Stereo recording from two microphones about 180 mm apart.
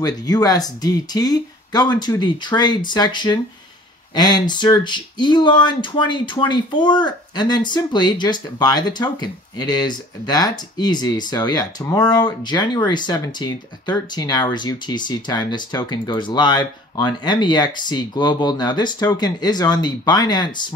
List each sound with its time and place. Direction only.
0.0 s speech: 20° left (ahead or behind)